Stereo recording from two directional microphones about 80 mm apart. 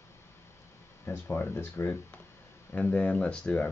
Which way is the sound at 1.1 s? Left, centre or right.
Left.